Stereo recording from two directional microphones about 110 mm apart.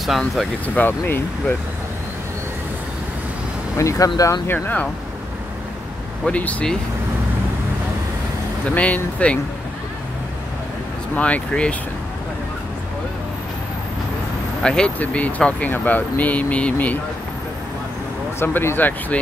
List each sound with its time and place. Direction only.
0.0 s speech: centre (ahead or behind)
0.7 s speech: 20° left (ahead or behind)
3.7 s speech: 30° left (ahead or behind)
4.5 s speech: 15° left (ahead or behind)
6.2 s speech: 10° left (ahead or behind)
8.6 s speech: 10° left (ahead or behind)
11.1 s speech: 10° left (ahead or behind)
14.6 s speech: 10° left (ahead or behind)
18.4 s speech: 20° left (ahead or behind)